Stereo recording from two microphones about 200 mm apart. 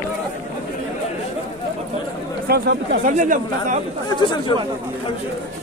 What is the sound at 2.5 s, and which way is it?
Speech, 55° right (ahead or behind).